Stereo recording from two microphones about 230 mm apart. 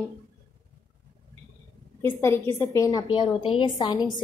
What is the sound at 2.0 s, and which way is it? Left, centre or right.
A woman's voice, centre.